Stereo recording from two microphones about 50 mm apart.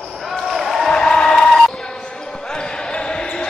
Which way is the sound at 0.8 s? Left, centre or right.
Centre.